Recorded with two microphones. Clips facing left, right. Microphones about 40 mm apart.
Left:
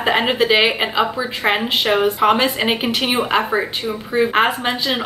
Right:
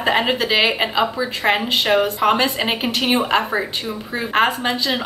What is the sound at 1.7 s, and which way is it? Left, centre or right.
A woman's voice, left.